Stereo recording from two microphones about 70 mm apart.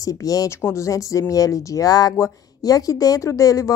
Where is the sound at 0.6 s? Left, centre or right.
Left.